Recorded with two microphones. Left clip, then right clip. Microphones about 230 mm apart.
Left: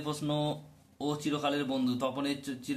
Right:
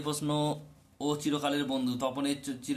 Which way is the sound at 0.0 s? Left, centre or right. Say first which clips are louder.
Right 2 dB; centre.